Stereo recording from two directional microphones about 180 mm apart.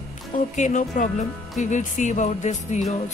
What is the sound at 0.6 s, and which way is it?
A woman's voice, 45° left (ahead or behind).